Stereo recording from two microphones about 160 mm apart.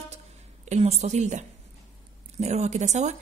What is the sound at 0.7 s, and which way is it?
Speech, 40° right (ahead or behind).